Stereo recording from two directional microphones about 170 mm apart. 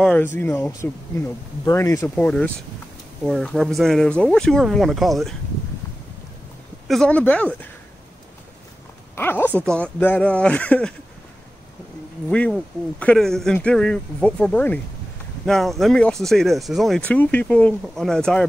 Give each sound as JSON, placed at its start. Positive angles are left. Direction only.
{"t": 0.0, "sound": "speech", "side_deg": 10}
{"t": 6.9, "sound": "speech", "side_deg": 5}
{"t": 9.1, "sound": "speech", "side_deg": 10}
{"t": 12.3, "sound": "speech", "side_deg": 5}